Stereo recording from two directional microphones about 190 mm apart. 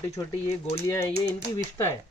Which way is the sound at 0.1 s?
15° left (ahead or behind).